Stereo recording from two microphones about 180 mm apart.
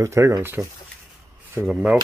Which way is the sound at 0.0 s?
15° right (ahead or behind).